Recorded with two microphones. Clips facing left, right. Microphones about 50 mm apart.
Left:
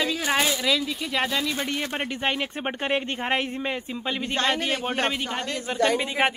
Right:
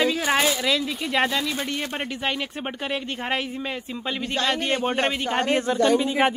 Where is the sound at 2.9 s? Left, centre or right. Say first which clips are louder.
Left 4 dB; left.